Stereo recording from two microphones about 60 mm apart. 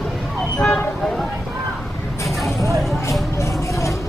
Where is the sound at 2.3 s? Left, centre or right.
Centre.